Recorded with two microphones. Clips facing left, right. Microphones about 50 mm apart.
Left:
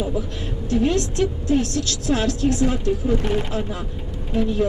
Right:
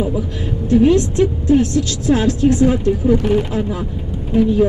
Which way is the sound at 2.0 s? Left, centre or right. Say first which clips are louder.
Right 6 dB; right.